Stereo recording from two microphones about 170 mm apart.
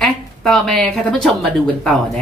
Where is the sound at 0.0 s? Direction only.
Centre (ahead or behind).